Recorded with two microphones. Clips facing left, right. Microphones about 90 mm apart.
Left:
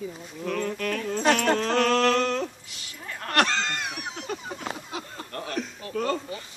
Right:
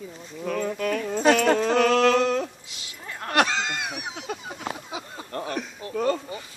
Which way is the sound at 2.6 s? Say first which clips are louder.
Even; 20° right (ahead or behind).